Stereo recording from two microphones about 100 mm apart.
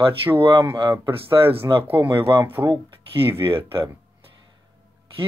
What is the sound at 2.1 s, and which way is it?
Speech, 25° right (ahead or behind).